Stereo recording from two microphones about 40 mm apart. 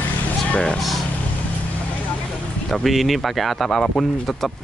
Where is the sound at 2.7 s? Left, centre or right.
Centre.